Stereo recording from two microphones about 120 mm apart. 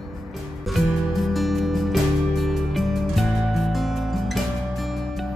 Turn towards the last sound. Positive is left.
turn(degrees=0)  # may be behind; listen again after turning